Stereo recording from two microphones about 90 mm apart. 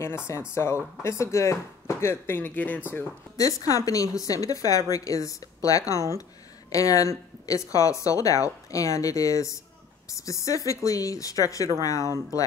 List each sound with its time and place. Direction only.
0.0 s speech: 30° left (ahead or behind)
3.3 s speech: 40° left (ahead or behind)